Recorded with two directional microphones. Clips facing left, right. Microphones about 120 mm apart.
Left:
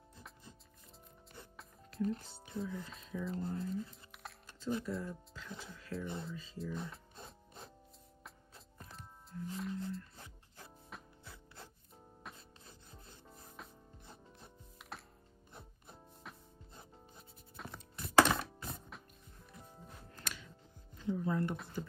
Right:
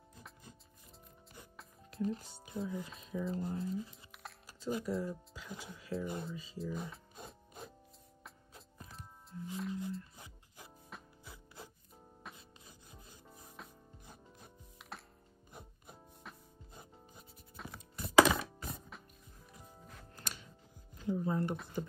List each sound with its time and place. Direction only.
1.4 s speech: centre (ahead or behind)
6.2 s music: 5° right (ahead or behind)
12.2 s rub: centre (ahead or behind)
15.5 s music: centre (ahead or behind)
21.3 s a sound: 25° right (ahead or behind)